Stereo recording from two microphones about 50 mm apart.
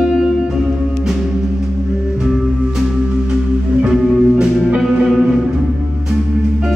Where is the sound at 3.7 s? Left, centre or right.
Centre.